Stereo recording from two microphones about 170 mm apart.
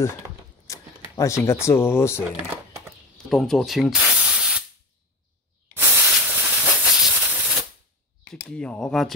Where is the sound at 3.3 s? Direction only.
Centre (ahead or behind).